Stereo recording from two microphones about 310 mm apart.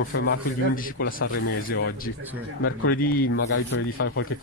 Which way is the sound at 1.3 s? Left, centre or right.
Left.